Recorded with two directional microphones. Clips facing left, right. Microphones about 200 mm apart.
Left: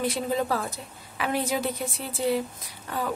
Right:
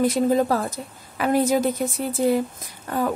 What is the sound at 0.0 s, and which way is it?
Speech, 45° right (ahead or behind).